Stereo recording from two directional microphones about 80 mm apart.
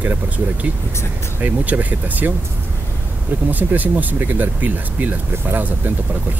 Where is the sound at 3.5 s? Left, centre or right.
Right.